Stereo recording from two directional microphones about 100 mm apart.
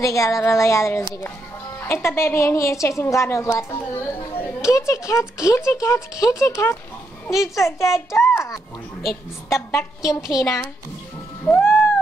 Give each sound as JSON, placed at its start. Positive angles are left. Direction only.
{"t": 0.0, "sound": "a woman's voice", "side_deg": 30}
{"t": 4.6, "sound": "speech", "side_deg": 30}
{"t": 7.2, "sound": "a child's voice", "side_deg": -5}
{"t": 7.5, "sound": "a woman's voice", "side_deg": 30}
{"t": 8.3, "sound": "a sound", "side_deg": 25}
{"t": 9.5, "sound": "a woman's voice", "side_deg": 25}
{"t": 11.4, "sound": "owl", "side_deg": 20}